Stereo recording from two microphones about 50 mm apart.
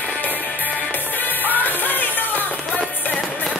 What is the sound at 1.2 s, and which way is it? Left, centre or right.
Music, left.